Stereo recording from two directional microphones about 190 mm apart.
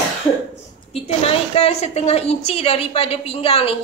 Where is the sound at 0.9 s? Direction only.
30° left (ahead or behind).